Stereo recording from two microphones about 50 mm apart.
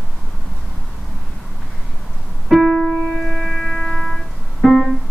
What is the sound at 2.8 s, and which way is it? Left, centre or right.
Music, left.